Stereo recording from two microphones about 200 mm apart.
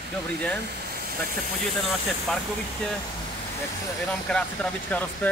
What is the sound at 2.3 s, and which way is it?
Speech, 5° left (ahead or behind).